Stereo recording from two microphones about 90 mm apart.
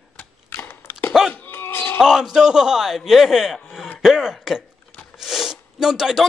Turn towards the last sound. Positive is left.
turn(degrees=-5)  # may be behind; listen again after turning